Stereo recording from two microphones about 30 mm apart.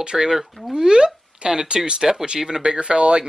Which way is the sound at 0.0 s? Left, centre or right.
Right.